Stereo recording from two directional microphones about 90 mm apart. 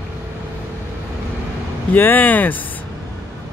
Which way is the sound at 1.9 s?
20° left (ahead or behind).